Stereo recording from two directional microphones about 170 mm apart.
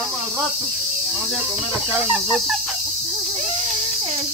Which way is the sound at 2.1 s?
Centre (ahead or behind).